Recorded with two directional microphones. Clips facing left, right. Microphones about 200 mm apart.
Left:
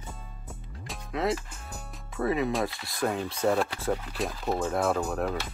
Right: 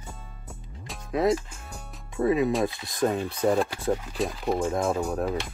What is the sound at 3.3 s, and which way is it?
Speech, 15° right (ahead or behind).